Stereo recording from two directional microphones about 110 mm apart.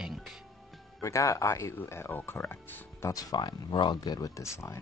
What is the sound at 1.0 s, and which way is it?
Speech, 30° left (ahead or behind).